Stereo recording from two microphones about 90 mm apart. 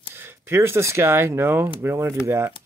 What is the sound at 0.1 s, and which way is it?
Speech, 25° right (ahead or behind).